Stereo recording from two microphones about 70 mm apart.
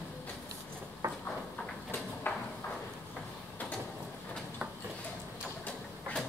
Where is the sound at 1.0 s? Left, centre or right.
Right.